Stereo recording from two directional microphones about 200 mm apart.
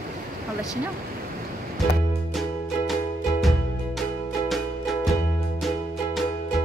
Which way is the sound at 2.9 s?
Centre (ahead or behind).